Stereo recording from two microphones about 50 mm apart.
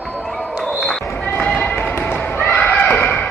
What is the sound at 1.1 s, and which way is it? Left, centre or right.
Basketball bounce, left.